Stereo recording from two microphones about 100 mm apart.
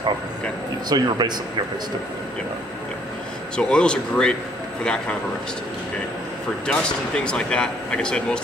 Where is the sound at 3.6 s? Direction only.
10° left (ahead or behind).